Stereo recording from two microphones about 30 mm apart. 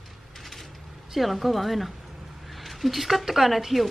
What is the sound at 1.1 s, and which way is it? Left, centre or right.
Speech, centre.